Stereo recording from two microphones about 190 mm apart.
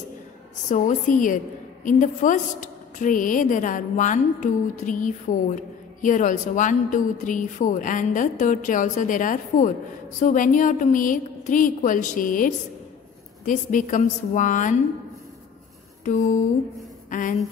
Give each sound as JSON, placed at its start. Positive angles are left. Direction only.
{"t": 0.7, "sound": "a woman's voice", "side_deg": 40}
{"t": 16.0, "sound": "a sound", "side_deg": 40}
{"t": 17.1, "sound": "a woman's voice", "side_deg": 45}